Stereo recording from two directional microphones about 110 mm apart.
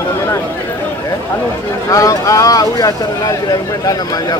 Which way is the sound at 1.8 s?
30° left (ahead or behind).